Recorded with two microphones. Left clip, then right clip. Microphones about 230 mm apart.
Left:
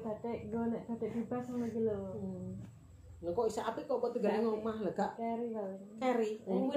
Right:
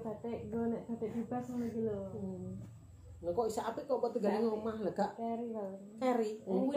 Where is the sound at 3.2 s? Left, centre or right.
Centre.